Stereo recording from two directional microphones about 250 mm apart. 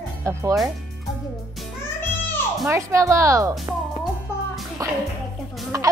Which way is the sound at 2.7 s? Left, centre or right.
Centre.